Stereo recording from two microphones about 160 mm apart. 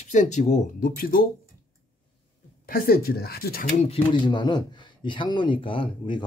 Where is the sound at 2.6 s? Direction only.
65° left (ahead or behind).